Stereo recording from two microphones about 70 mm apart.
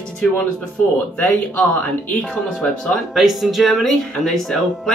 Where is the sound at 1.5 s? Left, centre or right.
Centre.